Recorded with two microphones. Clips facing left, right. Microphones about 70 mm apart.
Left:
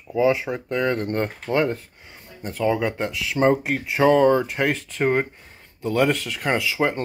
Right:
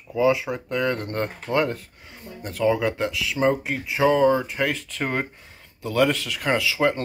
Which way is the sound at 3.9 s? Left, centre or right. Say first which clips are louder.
Left 2 dB; centre.